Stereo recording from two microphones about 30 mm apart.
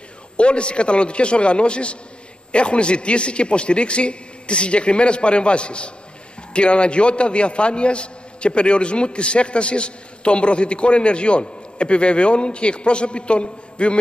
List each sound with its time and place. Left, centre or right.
0.4 s a man's voice: left